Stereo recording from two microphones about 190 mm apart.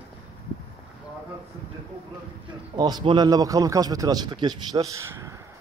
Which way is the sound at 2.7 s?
20° right (ahead or behind).